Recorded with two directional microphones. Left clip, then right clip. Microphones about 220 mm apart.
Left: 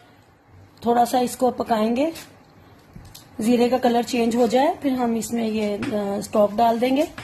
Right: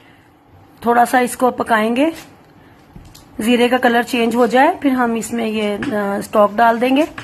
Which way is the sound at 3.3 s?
20° right (ahead or behind).